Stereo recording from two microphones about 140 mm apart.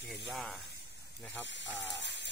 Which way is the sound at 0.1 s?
Centre (ahead or behind).